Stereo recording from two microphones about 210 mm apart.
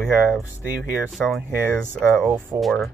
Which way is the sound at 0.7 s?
5° right (ahead or behind).